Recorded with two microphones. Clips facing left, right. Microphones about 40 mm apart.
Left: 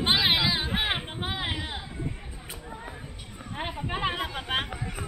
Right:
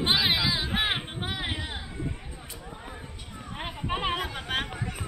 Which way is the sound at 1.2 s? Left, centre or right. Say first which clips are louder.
Left 1 dB; left.